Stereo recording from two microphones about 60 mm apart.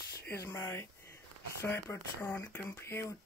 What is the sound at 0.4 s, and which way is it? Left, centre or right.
Speech, left.